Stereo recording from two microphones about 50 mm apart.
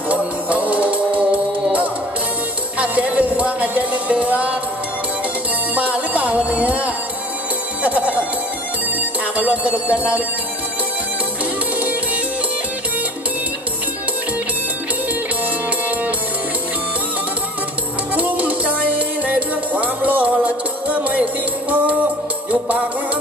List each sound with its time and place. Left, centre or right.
0.1 s music: right
2.8 s music: right
5.8 s music: right
9.4 s music: right
18.1 s music: right